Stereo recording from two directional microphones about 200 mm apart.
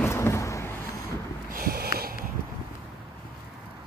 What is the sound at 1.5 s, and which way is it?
Sniff, 45° right (ahead or behind).